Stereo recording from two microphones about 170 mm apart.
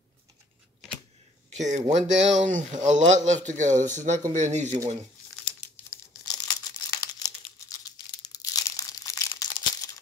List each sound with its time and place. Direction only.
1.6 s a man's voice: 45° right (ahead or behind)
6.2 s crumpling: 20° left (ahead or behind)